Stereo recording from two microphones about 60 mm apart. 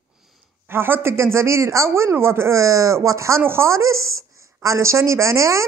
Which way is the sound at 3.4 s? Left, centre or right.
Right.